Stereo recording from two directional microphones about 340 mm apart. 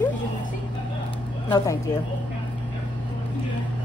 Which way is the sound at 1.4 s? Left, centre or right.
Centre.